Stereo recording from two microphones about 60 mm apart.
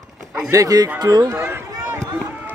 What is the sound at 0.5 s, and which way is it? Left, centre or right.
Speech, right.